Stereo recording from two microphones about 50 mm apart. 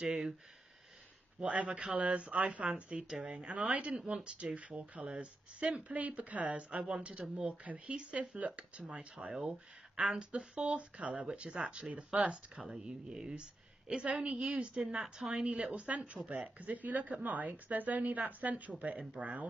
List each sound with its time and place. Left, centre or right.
0.0 s speech: centre
1.4 s a woman's voice: right